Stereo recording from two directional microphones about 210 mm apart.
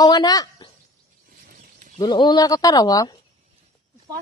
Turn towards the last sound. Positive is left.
turn(degrees=20)  # may be behind; listen again after turning